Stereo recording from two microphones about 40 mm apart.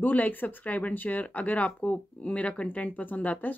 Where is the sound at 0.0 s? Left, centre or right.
Left.